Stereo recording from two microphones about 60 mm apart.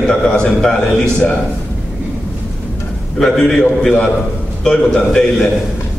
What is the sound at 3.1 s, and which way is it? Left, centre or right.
A man's voice, centre.